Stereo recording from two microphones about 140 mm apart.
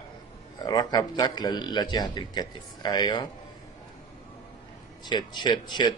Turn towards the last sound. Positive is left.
turn(degrees=30)  # may be behind; listen again after turning